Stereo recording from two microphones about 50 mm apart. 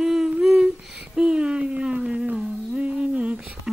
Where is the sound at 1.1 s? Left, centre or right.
Centre.